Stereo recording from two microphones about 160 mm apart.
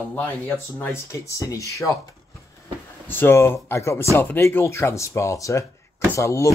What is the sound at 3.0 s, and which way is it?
Speech, 15° left (ahead or behind).